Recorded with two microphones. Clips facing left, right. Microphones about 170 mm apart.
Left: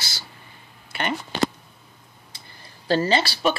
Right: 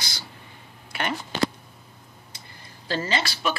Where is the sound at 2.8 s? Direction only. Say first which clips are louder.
Left 6 dB; 35° left (ahead or behind).